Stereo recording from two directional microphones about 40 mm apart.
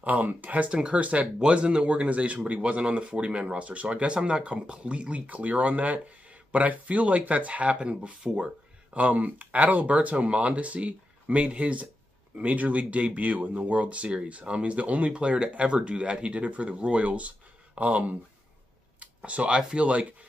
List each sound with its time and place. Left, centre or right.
0.0 s speech: right
0.7 s speech: right
1.0 s speech: right
5.2 s speech: right
7.9 s speech: right
8.9 s speech: right
15.1 s speech: right